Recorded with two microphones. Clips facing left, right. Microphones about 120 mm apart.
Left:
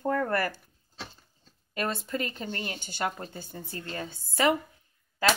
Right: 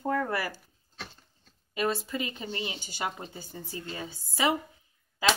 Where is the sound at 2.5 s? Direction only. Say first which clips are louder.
Even; 45° left (ahead or behind).